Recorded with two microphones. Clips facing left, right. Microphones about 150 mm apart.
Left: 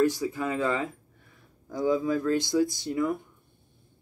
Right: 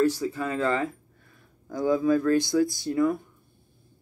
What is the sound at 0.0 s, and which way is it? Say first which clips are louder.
Speech: right 1 dB; 15° left (ahead or behind).